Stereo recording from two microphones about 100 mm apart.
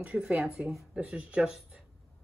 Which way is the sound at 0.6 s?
5° right (ahead or behind).